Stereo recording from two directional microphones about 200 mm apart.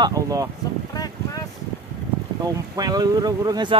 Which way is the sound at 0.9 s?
20° left (ahead or behind).